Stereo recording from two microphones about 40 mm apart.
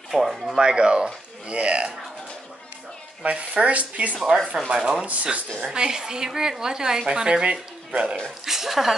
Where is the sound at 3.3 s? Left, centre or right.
Right.